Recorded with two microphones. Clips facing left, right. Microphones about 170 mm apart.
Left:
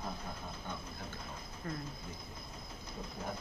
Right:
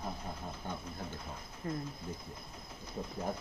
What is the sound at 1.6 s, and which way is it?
Speech, 20° right (ahead or behind).